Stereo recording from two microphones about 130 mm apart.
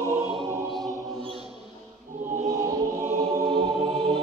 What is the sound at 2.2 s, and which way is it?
Choir, 90° right.